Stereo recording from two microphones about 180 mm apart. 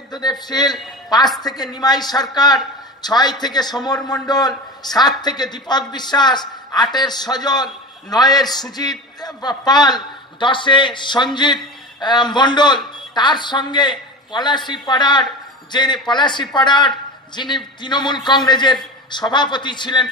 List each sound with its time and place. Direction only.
0.1 s a man's voice: 20° left (ahead or behind)